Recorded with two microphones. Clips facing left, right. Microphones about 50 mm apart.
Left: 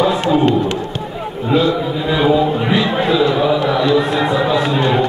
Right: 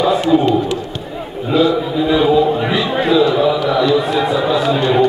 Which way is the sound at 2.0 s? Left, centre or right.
Centre.